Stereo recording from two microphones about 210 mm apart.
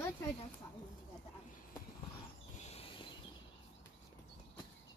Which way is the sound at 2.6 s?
30° left (ahead or behind).